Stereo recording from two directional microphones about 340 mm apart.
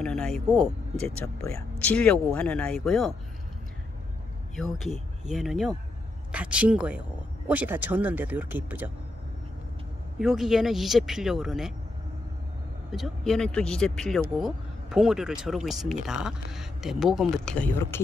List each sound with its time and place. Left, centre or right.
0.0 s speech: centre
4.6 s speech: centre
10.1 s speech: centre
12.9 s speech: centre